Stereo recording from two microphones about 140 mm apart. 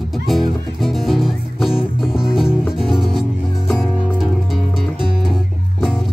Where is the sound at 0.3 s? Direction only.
Centre (ahead or behind).